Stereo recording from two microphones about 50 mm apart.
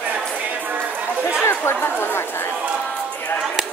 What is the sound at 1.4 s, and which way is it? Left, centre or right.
Speech, left.